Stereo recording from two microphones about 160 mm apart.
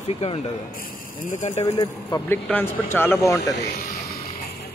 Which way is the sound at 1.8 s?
20° left (ahead or behind).